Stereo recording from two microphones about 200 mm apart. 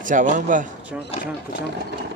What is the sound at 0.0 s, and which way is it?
Speech, 40° right (ahead or behind).